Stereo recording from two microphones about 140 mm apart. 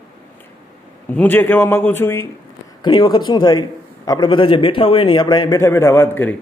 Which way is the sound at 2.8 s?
35° left (ahead or behind).